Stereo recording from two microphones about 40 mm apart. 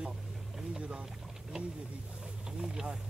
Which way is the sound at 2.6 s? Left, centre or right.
Centre.